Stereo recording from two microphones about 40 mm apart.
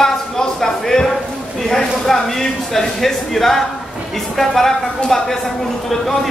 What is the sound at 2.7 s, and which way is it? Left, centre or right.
Speech, centre.